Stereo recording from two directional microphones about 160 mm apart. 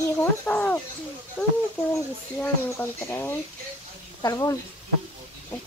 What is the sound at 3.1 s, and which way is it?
Speech, 15° left (ahead or behind).